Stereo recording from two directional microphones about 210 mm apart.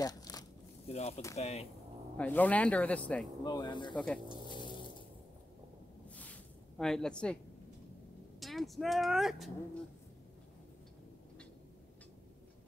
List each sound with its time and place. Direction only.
0.0 s a sound: 20° left (ahead or behind)
0.8 s speech: 30° left (ahead or behind)
2.1 s speech: 10° left (ahead or behind)
3.4 s speech: 20° left (ahead or behind)
3.9 s speech: 5° left (ahead or behind)
6.0 s a sound: 5° left (ahead or behind)
8.4 s speech: centre (ahead or behind)